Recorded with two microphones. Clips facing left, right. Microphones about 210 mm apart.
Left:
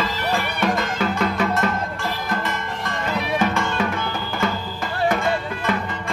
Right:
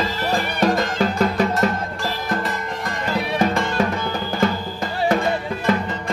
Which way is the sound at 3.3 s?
40° right (ahead or behind).